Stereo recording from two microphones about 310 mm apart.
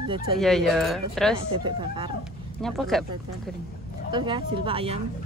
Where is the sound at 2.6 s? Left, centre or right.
Centre.